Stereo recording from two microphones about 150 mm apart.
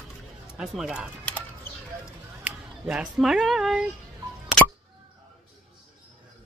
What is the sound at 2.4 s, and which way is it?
Speech, 5° right (ahead or behind).